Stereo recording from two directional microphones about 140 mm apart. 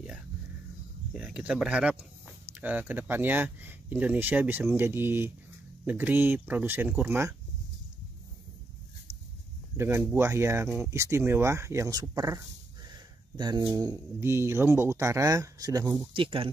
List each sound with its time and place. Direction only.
1.1 s speech: 10° right (ahead or behind)
9.8 s speech: 20° right (ahead or behind)
16.1 s speech: 40° right (ahead or behind)